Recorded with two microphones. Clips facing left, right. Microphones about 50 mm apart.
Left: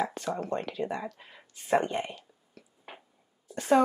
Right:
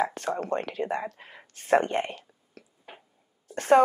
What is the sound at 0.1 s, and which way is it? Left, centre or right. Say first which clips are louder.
Speech: right 3 dB; right.